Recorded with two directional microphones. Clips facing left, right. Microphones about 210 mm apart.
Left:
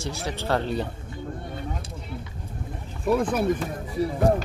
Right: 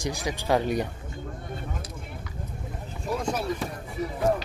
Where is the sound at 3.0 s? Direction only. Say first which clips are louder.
Left 7 dB; 55° left (ahead or behind).